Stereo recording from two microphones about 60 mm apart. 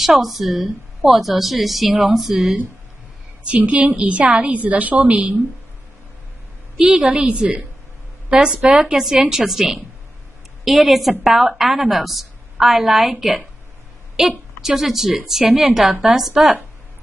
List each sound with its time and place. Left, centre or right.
0.0 s a woman's voice: centre
3.4 s a woman's voice: right
6.8 s a woman's voice: centre
9.0 s a woman's voice: centre
10.9 s a woman's voice: centre
14.2 s a woman's voice: centre